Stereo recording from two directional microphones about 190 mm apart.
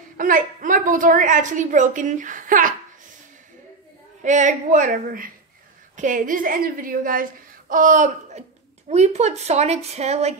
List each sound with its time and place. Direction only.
0.2 s a woman's voice: 45° right (ahead or behind)
4.2 s a woman's voice: 40° right (ahead or behind)